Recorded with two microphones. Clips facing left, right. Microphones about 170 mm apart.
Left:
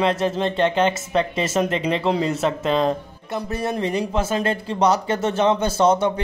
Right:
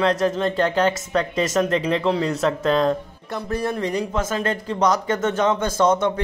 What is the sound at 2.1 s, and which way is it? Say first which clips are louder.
Speech: left 1 dB; 5° left (ahead or behind).